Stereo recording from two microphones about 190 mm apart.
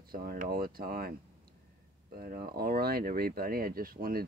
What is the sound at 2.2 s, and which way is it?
Speech, 50° right (ahead or behind).